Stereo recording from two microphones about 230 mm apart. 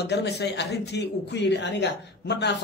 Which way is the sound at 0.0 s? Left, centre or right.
Left.